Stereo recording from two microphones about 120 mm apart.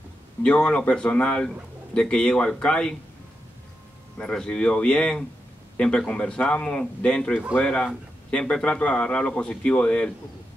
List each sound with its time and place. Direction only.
0.4 s a man's voice: 10° left (ahead or behind)
4.2 s a man's voice: 5° left (ahead or behind)
7.3 s speech: 5° right (ahead or behind)
7.6 s a man's voice: 10° left (ahead or behind)